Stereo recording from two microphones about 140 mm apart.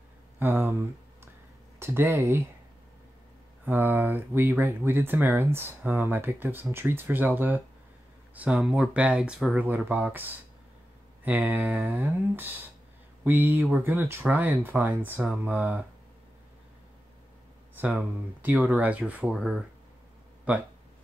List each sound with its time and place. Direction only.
0.4 s speech: 15° right (ahead or behind)
3.6 s speech: 15° right (ahead or behind)
17.7 s speech: 10° right (ahead or behind)